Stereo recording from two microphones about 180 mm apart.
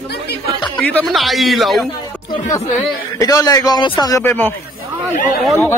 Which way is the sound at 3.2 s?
20° left (ahead or behind).